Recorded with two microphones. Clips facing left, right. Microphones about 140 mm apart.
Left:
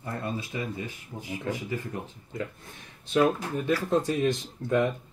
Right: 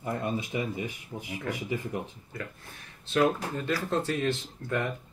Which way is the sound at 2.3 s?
20° left (ahead or behind).